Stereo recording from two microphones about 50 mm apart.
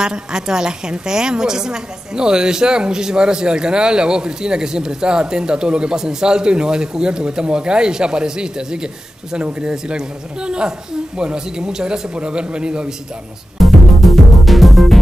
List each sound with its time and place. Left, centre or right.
0.0 s a woman's voice: centre
13.6 s music: centre